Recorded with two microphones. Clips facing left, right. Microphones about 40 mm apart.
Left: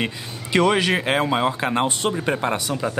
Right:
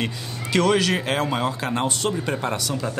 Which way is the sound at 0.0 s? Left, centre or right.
Centre.